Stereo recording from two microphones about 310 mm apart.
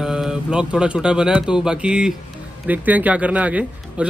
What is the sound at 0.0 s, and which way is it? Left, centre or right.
A man's voice, centre.